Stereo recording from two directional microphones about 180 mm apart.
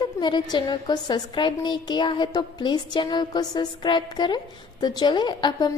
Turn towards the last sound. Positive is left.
turn(degrees=25)  # may be behind; listen again after turning